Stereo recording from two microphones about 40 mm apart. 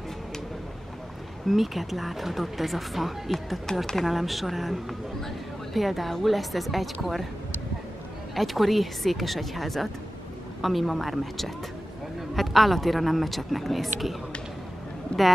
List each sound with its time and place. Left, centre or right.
1.5 s speech: centre
3.7 s speech: centre
4.0 s speech: centre
8.4 s speech: centre